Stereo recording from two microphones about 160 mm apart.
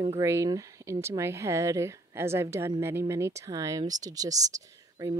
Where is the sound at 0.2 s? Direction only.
20° right (ahead or behind).